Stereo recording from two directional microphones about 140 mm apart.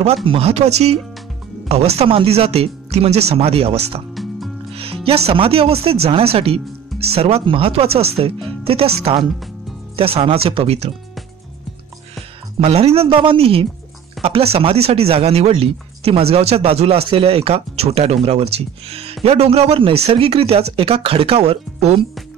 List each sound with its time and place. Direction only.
0.0 s speech: 45° right (ahead or behind)
4.1 s music: centre (ahead or behind)
4.7 s speech: 45° right (ahead or behind)
12.5 s speech: 45° right (ahead or behind)